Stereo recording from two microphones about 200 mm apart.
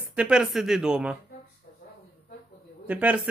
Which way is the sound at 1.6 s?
45° left (ahead or behind).